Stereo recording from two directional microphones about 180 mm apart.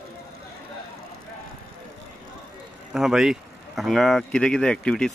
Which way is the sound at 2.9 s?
Centre (ahead or behind).